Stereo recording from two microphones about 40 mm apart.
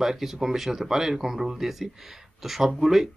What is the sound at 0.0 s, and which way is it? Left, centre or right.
Speech, centre.